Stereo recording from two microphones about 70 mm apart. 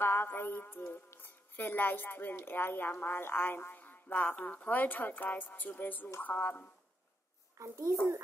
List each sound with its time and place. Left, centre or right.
0.0 s a woman's voice: left
7.5 s a child's voice: right